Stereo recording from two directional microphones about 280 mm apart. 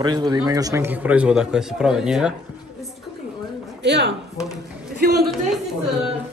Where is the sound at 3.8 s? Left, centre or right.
Right.